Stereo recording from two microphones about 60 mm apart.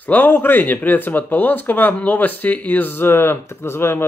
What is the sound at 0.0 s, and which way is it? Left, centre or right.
Speech, left.